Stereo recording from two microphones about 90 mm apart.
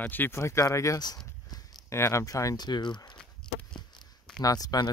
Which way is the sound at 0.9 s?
50° left (ahead or behind).